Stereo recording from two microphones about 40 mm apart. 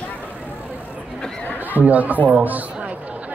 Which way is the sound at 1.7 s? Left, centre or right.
Right.